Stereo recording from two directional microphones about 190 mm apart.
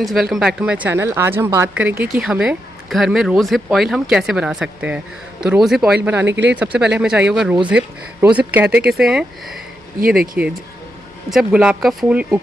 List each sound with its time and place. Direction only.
0.0 s speech: centre (ahead or behind)
6.2 s speech: 70° right (ahead or behind)
6.5 s speech: 5° right (ahead or behind)
10.4 s speech: 5° right (ahead or behind)